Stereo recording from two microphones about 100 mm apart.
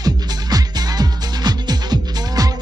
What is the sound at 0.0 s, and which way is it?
Music, 40° right (ahead or behind).